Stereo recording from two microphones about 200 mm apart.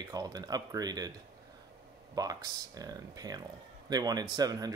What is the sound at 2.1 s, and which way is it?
Speech, 20° right (ahead or behind).